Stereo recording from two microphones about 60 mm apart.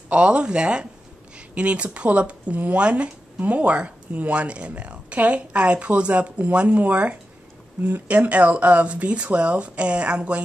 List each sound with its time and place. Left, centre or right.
0.1 s speech: centre